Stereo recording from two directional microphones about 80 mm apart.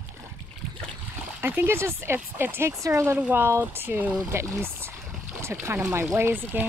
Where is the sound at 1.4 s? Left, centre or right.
Right.